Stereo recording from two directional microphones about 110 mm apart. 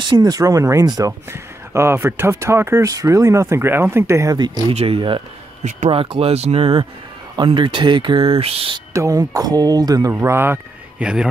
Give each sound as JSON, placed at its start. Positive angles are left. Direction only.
{"t": 0.0, "sound": "speech", "side_deg": -40}
{"t": 4.7, "sound": "speech", "side_deg": -60}
{"t": 8.9, "sound": "speech", "side_deg": -30}
{"t": 10.1, "sound": "speech", "side_deg": -20}
{"t": 11.0, "sound": "speech", "side_deg": -10}